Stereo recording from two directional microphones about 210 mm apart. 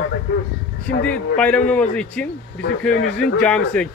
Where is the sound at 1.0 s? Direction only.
5° left (ahead or behind).